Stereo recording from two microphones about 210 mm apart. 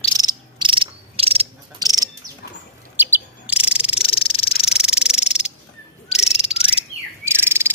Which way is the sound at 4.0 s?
25° left (ahead or behind).